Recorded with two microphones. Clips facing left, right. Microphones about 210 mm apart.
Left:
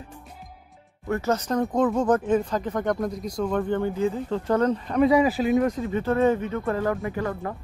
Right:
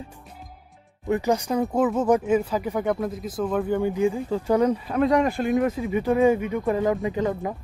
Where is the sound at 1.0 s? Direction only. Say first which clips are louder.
Right 2 dB; 15° right (ahead or behind).